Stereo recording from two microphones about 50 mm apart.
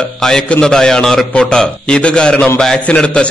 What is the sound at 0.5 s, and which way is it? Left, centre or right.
A man's voice, centre.